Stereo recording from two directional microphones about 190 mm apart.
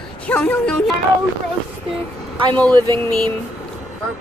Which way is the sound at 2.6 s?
20° right (ahead or behind).